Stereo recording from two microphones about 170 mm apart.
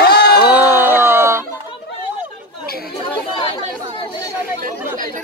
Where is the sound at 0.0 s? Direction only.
70° left (ahead or behind).